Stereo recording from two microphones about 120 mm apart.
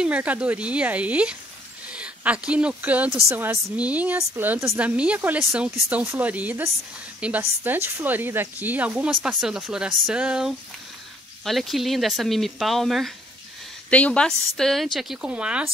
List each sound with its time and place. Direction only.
0.0 s a woman's voice: 10° right (ahead or behind)
13.8 s a woman's voice: 10° left (ahead or behind); by 15.7 s 10° right (ahead or behind)